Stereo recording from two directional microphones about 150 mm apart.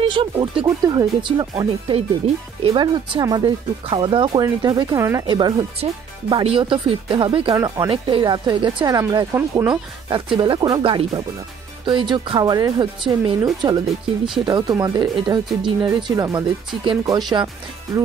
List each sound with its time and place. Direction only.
0.1 s speech: 35° right (ahead or behind)
1.6 s speech: 40° right (ahead or behind)
7.5 s speech: 25° right (ahead or behind)
13.8 s speech: centre (ahead or behind)
14.4 s speech: 25° right (ahead or behind)